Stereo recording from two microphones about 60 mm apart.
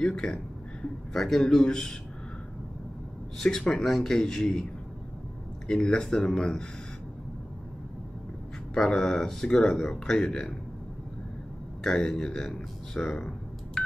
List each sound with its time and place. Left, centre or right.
0.0 s speech: centre
3.3 s speech: centre
5.7 s speech: centre
8.7 s speech: centre
11.8 s speech: centre
13.8 s telephone dialing: centre